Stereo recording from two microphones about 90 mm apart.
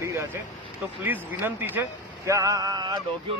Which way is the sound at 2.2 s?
35° right (ahead or behind).